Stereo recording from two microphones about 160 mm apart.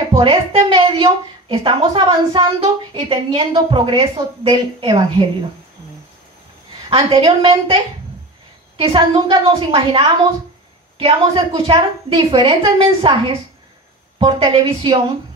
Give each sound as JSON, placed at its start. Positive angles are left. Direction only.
{"t": 0.1, "sound": "a woman's voice", "side_deg": -35}
{"t": 6.9, "sound": "a woman's voice", "side_deg": -35}